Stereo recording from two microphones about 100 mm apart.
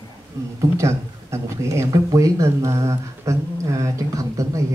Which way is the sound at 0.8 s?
30° right (ahead or behind).